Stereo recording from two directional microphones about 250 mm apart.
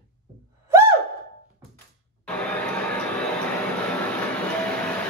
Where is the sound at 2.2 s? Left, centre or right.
Centre.